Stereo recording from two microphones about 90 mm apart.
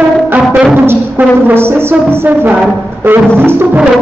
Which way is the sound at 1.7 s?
25° right (ahead or behind).